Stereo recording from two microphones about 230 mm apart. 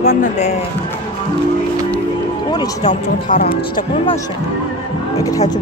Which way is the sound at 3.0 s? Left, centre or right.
Left.